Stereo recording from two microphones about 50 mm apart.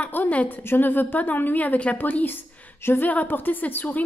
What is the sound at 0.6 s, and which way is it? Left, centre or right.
A woman's voice, left.